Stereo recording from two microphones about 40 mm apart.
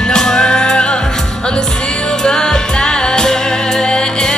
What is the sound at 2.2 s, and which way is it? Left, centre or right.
Music, centre.